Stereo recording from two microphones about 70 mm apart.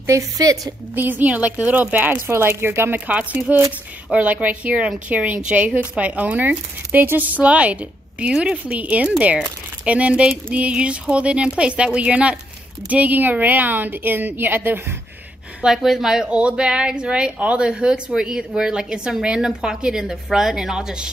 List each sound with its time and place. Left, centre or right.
0.0 s a woman's voice: right
0.9 s speech: right
3.1 s a woman's voice: right
15.6 s a woman's voice: centre